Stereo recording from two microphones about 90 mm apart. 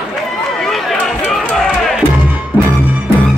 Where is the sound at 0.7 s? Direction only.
Centre (ahead or behind).